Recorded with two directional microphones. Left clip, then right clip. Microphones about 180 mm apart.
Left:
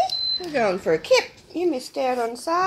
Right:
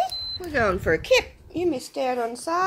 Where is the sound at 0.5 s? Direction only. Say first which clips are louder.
Right 1 dB; 15° right (ahead or behind).